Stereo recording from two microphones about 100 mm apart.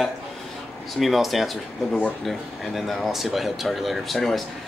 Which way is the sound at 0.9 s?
Centre (ahead or behind).